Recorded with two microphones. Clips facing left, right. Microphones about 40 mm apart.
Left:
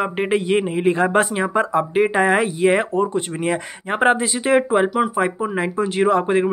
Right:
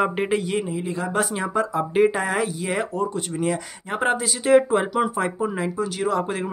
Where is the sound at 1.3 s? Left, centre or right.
Left.